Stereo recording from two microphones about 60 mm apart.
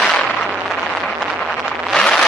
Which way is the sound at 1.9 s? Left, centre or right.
Centre.